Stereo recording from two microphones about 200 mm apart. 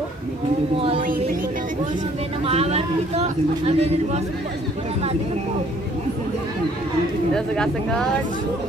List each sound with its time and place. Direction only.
2.4 s speech: 30° right (ahead or behind)
7.3 s speech: 5° left (ahead or behind)